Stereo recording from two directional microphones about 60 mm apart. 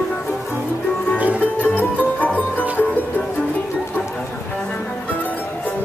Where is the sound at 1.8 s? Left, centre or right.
Left.